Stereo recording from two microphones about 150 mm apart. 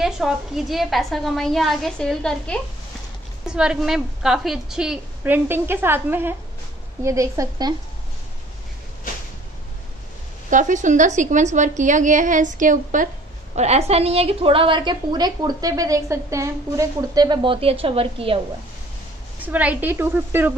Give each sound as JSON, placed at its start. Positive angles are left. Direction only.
{"t": 0.0, "sound": "a woman's voice", "side_deg": -5}
{"t": 3.4, "sound": "a woman's voice", "side_deg": -5}
{"t": 10.5, "sound": "a woman's voice", "side_deg": -55}
{"t": 13.6, "sound": "a woman's voice", "side_deg": -45}
{"t": 19.4, "sound": "a woman's voice", "side_deg": -10}